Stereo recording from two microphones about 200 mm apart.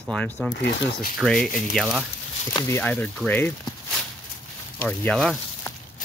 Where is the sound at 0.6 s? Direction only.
60° left (ahead or behind).